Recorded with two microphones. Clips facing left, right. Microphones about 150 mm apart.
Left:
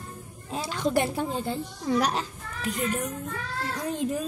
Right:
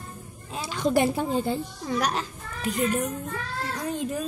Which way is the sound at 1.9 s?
30° left (ahead or behind).